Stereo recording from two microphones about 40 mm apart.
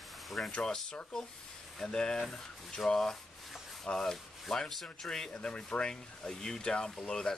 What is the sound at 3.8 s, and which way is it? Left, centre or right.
Rub, centre.